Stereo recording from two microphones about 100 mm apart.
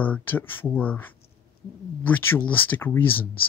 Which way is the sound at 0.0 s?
20° left (ahead or behind).